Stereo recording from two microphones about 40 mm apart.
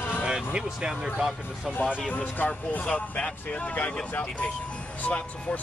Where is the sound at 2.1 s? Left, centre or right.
Left.